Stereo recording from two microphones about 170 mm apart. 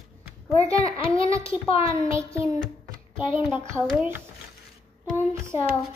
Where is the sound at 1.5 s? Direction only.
35° left (ahead or behind).